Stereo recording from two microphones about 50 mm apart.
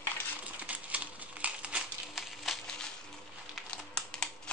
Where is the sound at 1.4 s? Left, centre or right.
Right.